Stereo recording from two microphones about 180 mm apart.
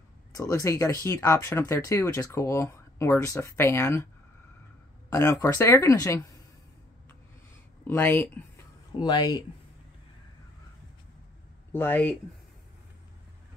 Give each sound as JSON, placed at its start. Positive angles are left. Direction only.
{"t": 0.4, "sound": "speech", "side_deg": 15}
{"t": 5.1, "sound": "speech", "side_deg": 15}
{"t": 7.8, "sound": "speech", "side_deg": 10}
{"t": 9.0, "sound": "speech", "side_deg": 25}
{"t": 11.7, "sound": "speech", "side_deg": 10}